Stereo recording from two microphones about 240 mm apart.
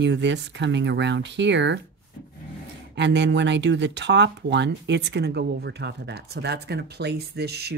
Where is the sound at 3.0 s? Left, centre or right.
Right.